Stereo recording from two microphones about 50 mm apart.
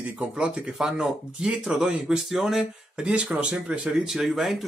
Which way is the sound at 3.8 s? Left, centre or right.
Centre.